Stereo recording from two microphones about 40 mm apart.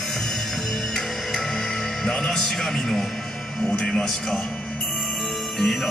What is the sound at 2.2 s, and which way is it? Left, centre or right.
Speech, centre.